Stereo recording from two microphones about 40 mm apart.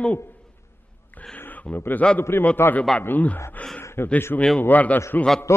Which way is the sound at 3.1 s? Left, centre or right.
Left.